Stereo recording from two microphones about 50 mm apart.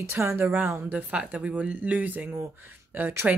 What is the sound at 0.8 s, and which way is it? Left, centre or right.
Speech, right.